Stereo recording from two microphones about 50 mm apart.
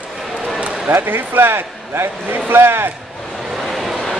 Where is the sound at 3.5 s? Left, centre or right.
Centre.